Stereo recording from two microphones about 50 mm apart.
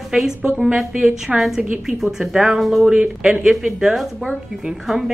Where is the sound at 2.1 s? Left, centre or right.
Centre.